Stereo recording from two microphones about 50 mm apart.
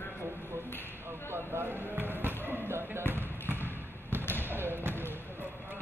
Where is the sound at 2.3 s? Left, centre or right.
Right.